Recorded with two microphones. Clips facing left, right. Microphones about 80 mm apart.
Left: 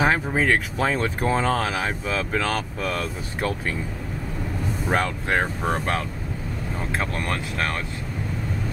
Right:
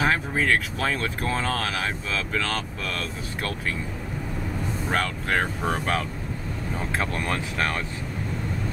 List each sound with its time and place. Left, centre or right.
0.0 s speech: centre
4.8 s speech: centre